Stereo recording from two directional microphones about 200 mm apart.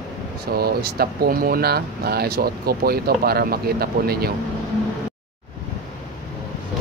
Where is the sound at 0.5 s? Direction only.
50° right (ahead or behind).